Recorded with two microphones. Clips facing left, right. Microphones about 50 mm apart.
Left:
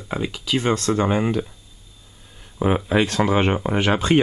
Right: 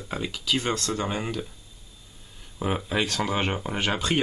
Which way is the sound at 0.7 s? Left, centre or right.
Left.